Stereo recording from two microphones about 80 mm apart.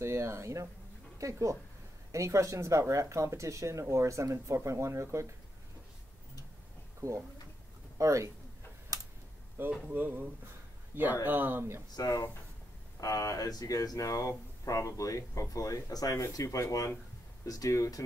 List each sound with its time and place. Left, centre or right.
0.0 s a sound: right
1.1 s speech: right
7.0 s speech: right
8.9 s a sound: right
9.6 s speech: right
11.2 s speech: right
11.9 s speech: left